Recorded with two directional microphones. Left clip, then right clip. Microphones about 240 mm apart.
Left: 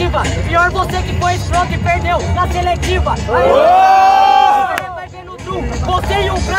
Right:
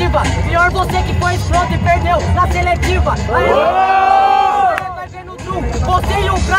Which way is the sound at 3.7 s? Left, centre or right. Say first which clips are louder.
Left 3 dB; left.